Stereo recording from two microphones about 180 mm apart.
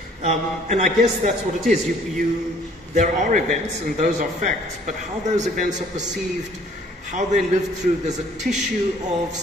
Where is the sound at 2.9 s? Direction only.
40° right (ahead or behind).